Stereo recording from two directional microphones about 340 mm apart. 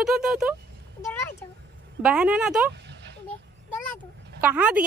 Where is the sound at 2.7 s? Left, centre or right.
Right.